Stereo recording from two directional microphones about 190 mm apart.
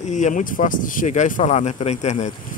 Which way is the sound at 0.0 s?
40° left (ahead or behind).